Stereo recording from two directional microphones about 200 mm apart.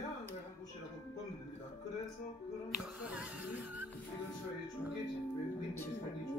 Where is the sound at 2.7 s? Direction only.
5° right (ahead or behind).